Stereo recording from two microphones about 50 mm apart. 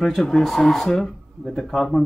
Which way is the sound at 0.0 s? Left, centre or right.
Centre.